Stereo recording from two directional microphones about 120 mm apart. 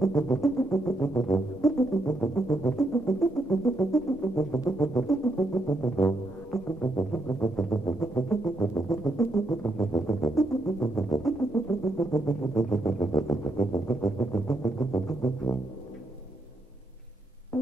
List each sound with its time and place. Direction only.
0.0 s didgeridoo: 25° left (ahead or behind)
4.4 s music: 20° left (ahead or behind)
14.0 s didgeridoo: 25° left (ahead or behind)